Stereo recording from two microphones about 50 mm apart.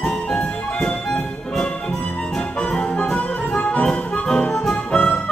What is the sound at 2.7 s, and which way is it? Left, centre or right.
Music, centre.